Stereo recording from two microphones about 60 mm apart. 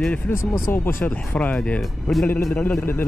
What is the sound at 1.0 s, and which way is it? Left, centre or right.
Speech, centre.